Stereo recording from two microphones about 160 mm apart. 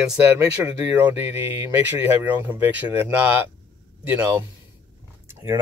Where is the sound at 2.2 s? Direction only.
10° right (ahead or behind).